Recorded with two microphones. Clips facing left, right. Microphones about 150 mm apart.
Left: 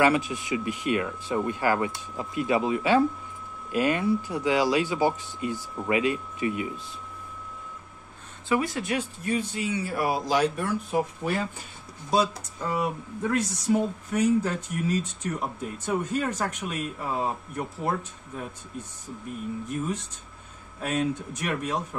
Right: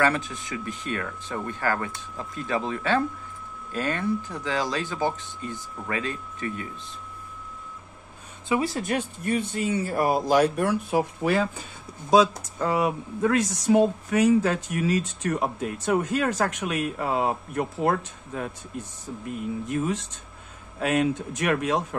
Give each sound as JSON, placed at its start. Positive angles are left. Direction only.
{"t": 0.0, "sound": "speech", "side_deg": 10}
{"t": 8.5, "sound": "speech", "side_deg": -30}
{"t": 8.8, "sound": "speech", "side_deg": -50}
{"t": 12.5, "sound": "speech", "side_deg": -85}
{"t": 19.7, "sound": "speech", "side_deg": -90}